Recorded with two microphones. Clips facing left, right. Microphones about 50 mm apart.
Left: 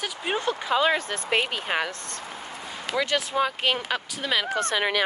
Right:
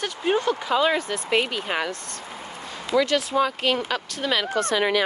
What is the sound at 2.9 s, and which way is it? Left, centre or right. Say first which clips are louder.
Speech: right 4 dB; left.